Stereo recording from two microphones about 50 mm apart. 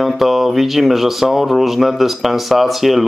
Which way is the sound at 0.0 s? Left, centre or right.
Centre.